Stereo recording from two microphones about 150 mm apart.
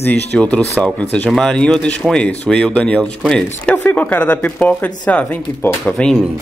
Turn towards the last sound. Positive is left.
turn(degrees=10)  # may be behind; listen again after turning